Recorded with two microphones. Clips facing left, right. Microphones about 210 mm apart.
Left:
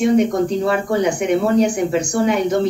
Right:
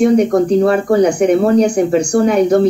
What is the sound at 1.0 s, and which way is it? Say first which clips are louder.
A woman's voice: right 5 dB; 40° right (ahead or behind).